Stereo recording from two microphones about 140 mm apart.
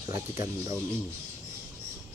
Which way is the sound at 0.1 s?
25° right (ahead or behind).